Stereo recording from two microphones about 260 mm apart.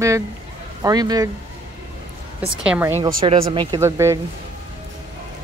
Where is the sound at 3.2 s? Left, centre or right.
Right.